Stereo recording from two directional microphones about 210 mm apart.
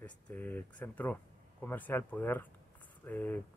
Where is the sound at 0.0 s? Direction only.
10° left (ahead or behind).